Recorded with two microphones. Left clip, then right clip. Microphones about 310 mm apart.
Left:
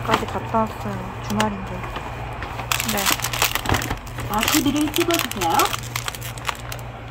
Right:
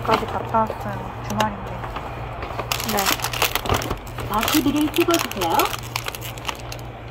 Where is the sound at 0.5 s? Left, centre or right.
Left.